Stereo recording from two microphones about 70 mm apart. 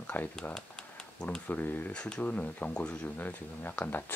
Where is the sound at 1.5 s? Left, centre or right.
Left.